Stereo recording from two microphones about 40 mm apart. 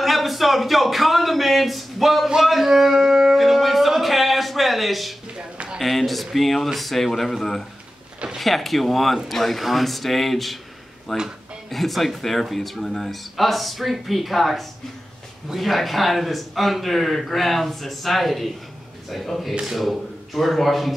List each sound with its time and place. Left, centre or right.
0.0 s a man's voice: centre
2.2 s speech: centre
2.5 s a sound: centre
5.8 s a man's voice: centre